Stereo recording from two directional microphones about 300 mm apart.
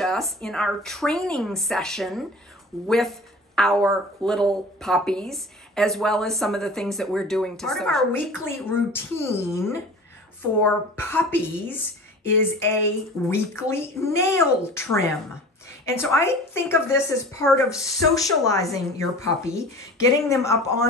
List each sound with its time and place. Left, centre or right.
0.0 s a woman's voice: centre